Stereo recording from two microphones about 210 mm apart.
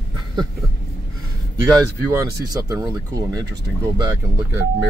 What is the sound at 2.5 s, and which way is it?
Speech, 15° right (ahead or behind).